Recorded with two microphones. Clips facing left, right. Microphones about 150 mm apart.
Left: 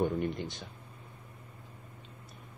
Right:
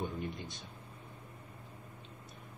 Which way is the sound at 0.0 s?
70° left (ahead or behind).